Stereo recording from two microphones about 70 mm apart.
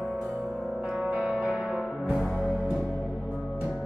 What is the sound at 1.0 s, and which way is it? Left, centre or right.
Music, centre.